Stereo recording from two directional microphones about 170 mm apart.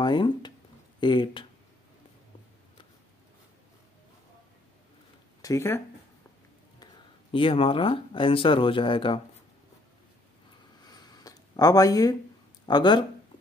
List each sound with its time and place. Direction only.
0.0 s speech: 25° left (ahead or behind)
5.4 s speech: 15° left (ahead or behind)
7.3 s speech: 30° left (ahead or behind)
10.8 s a sound: 25° left (ahead or behind)
12.6 s speech: 25° left (ahead or behind)